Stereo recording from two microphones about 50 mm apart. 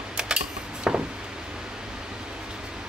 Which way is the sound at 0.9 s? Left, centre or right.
Centre.